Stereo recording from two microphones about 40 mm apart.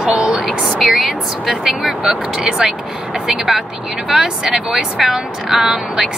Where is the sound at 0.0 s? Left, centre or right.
Centre.